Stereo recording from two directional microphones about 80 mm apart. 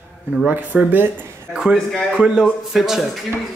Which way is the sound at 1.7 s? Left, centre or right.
Centre.